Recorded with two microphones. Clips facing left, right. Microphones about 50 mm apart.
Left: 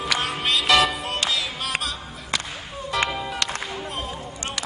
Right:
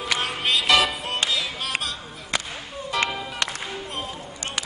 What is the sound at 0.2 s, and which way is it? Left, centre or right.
Music, centre.